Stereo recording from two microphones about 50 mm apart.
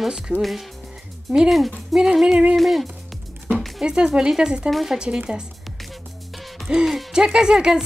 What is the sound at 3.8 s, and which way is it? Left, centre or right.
Speech, centre.